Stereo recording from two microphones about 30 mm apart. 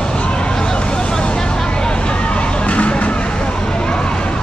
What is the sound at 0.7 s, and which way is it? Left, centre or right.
Vehicle, left.